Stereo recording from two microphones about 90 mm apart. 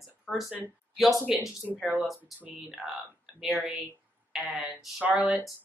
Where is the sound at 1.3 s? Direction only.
5° right (ahead or behind).